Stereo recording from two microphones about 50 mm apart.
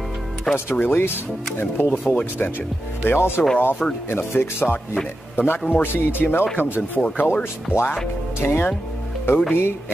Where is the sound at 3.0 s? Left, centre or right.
Left.